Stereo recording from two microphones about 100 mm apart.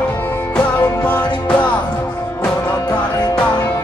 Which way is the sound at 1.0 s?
15° left (ahead or behind).